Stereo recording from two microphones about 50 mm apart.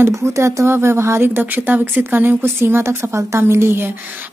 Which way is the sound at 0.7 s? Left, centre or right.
Right.